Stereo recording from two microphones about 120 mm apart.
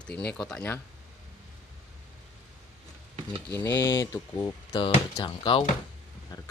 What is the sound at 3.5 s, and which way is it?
Speech, 20° left (ahead or behind).